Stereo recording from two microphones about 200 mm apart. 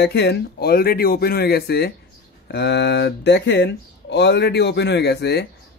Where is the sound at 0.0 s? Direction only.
55° left (ahead or behind).